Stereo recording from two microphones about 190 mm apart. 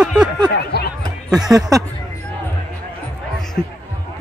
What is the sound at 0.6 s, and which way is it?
Speech, 55° left (ahead or behind).